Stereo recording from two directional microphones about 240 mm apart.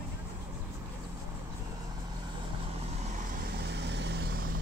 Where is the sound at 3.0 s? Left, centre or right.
Right.